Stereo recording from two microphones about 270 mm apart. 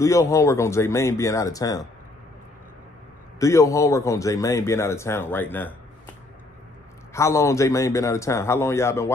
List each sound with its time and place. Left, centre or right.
0.0 s a man's voice: centre
3.3 s a man's voice: centre
7.2 s a man's voice: centre